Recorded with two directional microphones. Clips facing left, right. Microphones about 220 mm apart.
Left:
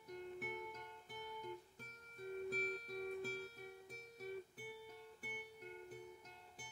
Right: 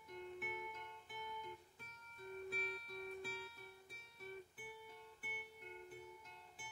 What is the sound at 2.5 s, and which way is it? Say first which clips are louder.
Music: left 4 dB; 40° left (ahead or behind).